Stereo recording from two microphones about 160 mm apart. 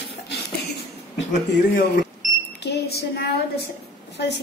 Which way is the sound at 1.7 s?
60° left (ahead or behind).